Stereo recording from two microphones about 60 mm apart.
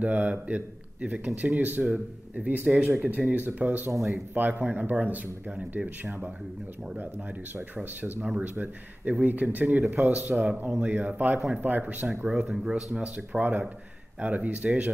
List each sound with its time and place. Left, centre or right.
0.0 s speech: right
7.7 s speech: right
13.4 s speech: right